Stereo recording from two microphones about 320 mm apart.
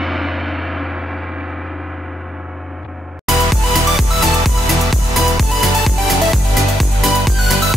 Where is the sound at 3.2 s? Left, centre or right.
Centre.